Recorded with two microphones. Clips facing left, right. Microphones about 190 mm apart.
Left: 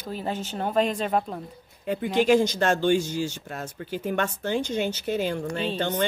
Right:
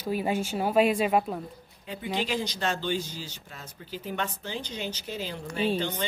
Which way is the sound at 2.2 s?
50° left (ahead or behind).